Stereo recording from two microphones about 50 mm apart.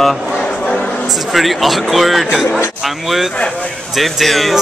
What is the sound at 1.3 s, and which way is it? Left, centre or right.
Speech, centre.